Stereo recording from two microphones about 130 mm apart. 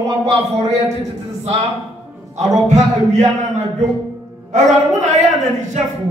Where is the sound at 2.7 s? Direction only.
65° right (ahead or behind).